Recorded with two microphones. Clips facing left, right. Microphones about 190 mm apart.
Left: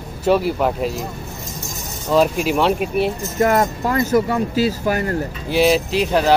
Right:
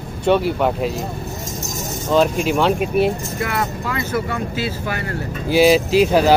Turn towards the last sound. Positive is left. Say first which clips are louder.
# right 3 dB
turn(degrees=-5)  # may be behind; listen again after turning